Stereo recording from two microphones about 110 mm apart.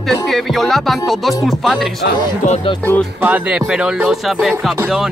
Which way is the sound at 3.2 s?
15° right (ahead or behind).